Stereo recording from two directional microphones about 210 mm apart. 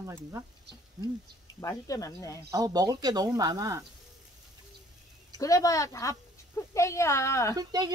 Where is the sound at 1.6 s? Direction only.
15° left (ahead or behind).